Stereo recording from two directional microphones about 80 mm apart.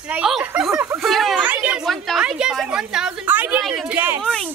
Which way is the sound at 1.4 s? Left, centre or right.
Centre.